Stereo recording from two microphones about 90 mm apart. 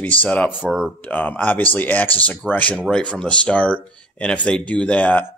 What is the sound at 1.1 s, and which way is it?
Speech, 20° left (ahead or behind).